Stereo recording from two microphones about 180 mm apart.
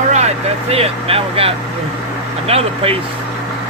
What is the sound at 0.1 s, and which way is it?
Speech, 35° right (ahead or behind).